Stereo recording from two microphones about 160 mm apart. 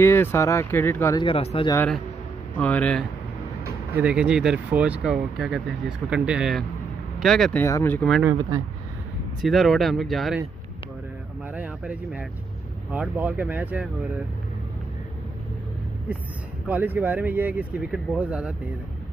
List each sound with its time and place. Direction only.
0.0 s speech: 15° left (ahead or behind)
1.1 s speech: 35° left (ahead or behind)
2.5 s speech: 10° left (ahead or behind)
3.9 s speech: 5° right (ahead or behind)
7.6 s speech: 15° left (ahead or behind)
9.4 s speech: centre (ahead or behind)
11.5 s speech: 10° right (ahead or behind)
16.6 s speech: 10° right (ahead or behind)